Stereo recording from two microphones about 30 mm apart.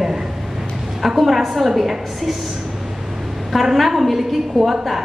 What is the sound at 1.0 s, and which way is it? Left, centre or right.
A woman's voice, centre.